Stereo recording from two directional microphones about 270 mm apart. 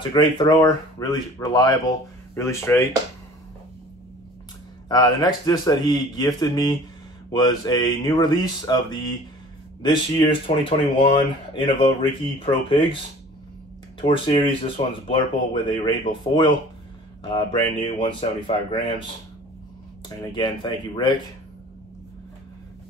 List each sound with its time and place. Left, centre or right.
0.1 s speech: centre
4.8 s speech: centre
14.0 s speech: centre
20.3 s speech: centre